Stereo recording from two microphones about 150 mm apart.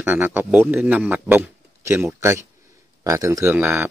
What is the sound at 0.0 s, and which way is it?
A man's voice, 15° right (ahead or behind).